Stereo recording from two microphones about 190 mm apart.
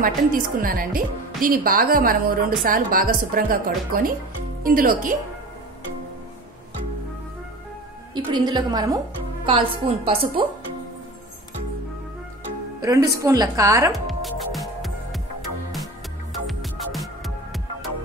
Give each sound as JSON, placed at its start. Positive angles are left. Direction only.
{"t": 0.0, "sound": "a woman's voice", "side_deg": -45}
{"t": 8.1, "sound": "a woman's voice", "side_deg": -20}
{"t": 12.8, "sound": "a woman's voice", "side_deg": -20}
{"t": 14.0, "sound": "music", "side_deg": 0}
{"t": 16.4, "sound": "music", "side_deg": 0}